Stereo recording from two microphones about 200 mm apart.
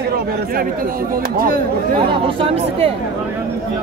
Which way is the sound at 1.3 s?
45° right (ahead or behind).